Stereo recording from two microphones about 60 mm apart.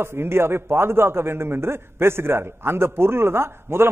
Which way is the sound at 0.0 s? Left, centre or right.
Right.